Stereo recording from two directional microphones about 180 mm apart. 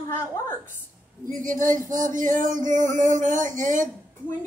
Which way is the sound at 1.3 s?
45° right (ahead or behind).